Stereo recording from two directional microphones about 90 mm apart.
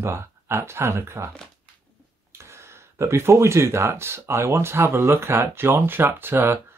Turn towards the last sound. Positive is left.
turn(degrees=-25)  # may be behind; listen again after turning